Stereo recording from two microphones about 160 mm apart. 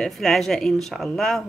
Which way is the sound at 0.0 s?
Centre (ahead or behind).